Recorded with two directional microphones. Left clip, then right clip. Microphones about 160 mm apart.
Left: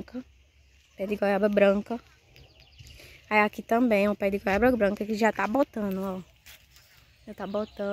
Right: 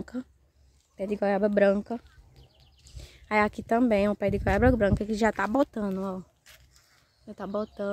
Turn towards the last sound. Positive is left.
turn(degrees=-5)  # may be behind; listen again after turning